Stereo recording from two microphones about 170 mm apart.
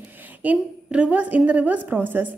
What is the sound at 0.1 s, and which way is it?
A woman's voice, 10° right (ahead or behind).